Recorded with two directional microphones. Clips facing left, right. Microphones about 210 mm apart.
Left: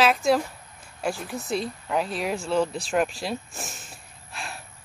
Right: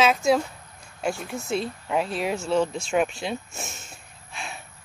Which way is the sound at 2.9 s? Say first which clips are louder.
Right 1 dB; centre (ahead or behind).